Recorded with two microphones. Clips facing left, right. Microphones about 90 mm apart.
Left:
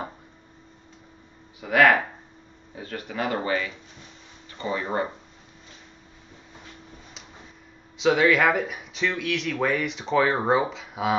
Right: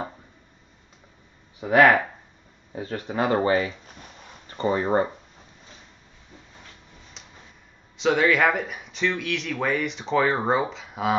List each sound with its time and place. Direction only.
1.6 s speech: 30° right (ahead or behind)
8.0 s speech: centre (ahead or behind)